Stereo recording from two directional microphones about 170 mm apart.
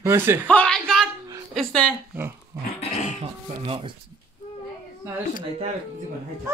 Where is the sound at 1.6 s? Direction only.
5° left (ahead or behind).